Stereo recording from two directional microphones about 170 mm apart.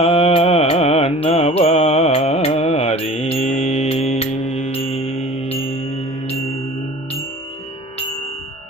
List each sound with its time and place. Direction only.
0.0 s music: 35° left (ahead or behind)